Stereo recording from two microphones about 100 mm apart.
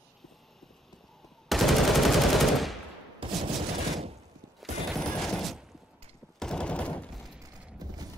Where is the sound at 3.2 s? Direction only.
60° right (ahead or behind).